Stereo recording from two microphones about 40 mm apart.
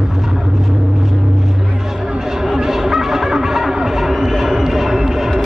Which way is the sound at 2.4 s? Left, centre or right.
Centre.